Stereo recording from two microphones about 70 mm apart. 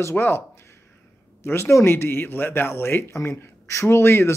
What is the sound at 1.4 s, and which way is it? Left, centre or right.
Speech, left.